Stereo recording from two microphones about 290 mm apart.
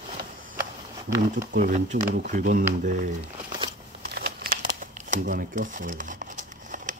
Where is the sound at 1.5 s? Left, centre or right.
Right.